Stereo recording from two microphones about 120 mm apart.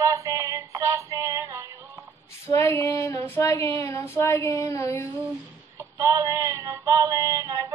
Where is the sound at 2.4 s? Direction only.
20° left (ahead or behind).